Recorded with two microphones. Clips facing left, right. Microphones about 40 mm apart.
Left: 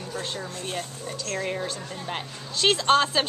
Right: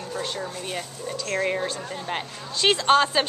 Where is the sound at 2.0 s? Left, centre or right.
Centre.